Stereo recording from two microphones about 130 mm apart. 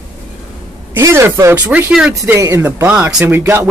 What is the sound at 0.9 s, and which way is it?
Speech, 20° right (ahead or behind).